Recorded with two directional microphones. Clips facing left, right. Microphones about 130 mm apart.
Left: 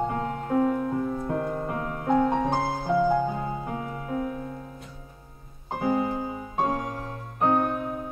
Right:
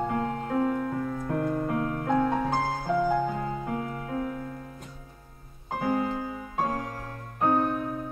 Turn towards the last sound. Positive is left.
turn(degrees=15)  # may be behind; listen again after turning